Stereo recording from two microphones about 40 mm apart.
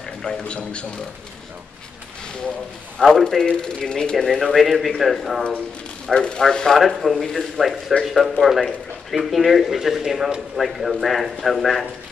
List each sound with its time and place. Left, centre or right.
0.2 s speech: left
3.0 s a man's voice: centre
4.6 s a man's voice: centre
6.0 s speech: left
7.1 s a man's voice: centre
9.8 s a man's voice: centre